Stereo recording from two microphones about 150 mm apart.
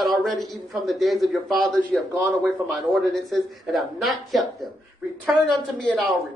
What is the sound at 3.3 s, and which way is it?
A man's voice, centre (ahead or behind).